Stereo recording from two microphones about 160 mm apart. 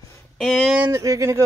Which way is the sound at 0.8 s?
20° right (ahead or behind).